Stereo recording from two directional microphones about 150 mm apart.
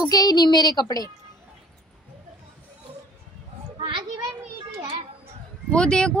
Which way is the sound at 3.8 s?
35° right (ahead or behind).